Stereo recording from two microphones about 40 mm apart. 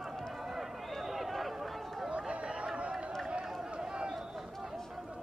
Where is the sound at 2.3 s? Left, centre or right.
Right.